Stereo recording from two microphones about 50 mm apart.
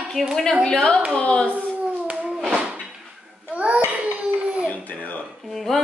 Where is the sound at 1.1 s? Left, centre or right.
Left.